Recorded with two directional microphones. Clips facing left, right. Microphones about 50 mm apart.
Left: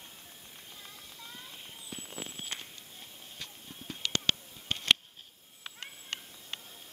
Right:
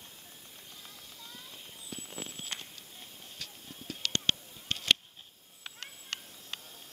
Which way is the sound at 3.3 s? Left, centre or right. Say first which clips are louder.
Left 1 dB; centre.